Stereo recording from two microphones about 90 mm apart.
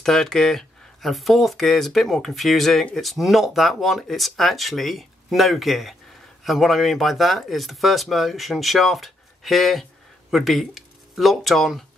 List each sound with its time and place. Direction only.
0.0 s speech: 5° left (ahead or behind)